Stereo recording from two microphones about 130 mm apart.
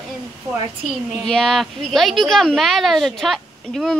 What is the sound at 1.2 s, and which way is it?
A woman's voice, 5° left (ahead or behind).